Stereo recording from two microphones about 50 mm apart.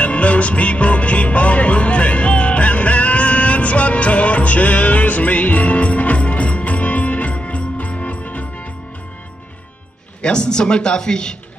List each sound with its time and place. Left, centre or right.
0.0 s music: left
10.2 s speech: centre